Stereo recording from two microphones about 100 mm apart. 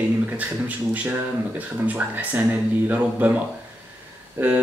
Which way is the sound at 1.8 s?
15° right (ahead or behind).